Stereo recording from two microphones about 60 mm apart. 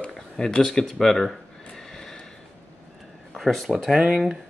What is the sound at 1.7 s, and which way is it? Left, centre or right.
Neigh, centre.